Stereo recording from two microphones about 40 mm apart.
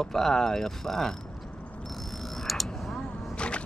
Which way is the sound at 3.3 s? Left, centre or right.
Left.